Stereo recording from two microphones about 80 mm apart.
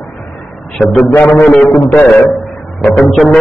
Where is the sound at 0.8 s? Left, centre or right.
Centre.